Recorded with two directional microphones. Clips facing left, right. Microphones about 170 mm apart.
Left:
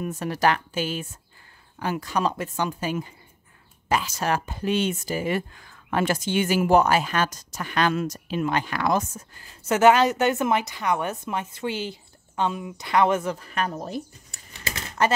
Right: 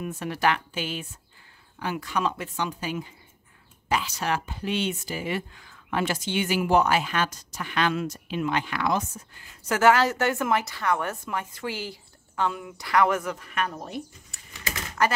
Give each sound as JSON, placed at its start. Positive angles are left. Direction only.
{"t": 0.0, "sound": "a woman's voice", "side_deg": 40}
{"t": 9.7, "sound": "a woman's voice", "side_deg": 20}
{"t": 15.0, "sound": "a woman's voice", "side_deg": 25}